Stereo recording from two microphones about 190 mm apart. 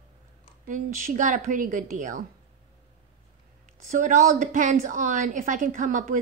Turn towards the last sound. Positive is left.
turn(degrees=-45)  # may be behind; listen again after turning